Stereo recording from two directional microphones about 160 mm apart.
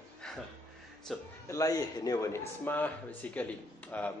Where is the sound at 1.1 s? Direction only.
Centre (ahead or behind).